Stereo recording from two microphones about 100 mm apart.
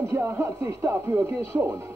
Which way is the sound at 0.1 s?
25° right (ahead or behind).